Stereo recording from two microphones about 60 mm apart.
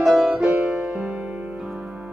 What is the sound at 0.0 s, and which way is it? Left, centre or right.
Music, centre.